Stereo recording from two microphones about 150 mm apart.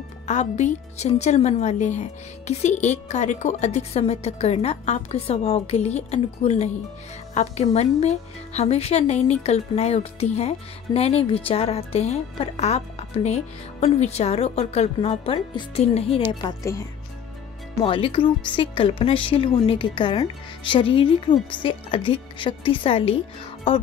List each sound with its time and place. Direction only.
0.3 s speech: 50° left (ahead or behind)
7.7 s speech: 45° left (ahead or behind)
16.3 s speech: 30° left (ahead or behind)
17.8 s speech: 35° left (ahead or behind)